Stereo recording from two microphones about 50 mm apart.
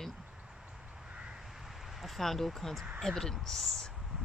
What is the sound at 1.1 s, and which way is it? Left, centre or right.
Crow, centre.